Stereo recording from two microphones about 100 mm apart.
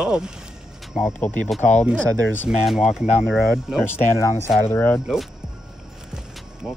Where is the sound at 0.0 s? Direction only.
10° right (ahead or behind).